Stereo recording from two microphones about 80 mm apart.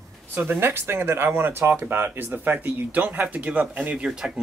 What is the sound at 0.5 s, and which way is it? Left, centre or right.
A man's voice, right.